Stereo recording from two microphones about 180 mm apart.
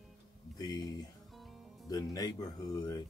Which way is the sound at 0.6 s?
25° left (ahead or behind).